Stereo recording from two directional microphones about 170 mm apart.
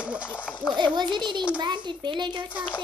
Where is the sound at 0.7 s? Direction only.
25° right (ahead or behind).